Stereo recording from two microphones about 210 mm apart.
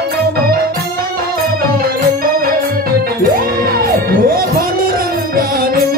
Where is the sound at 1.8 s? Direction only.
45° right (ahead or behind).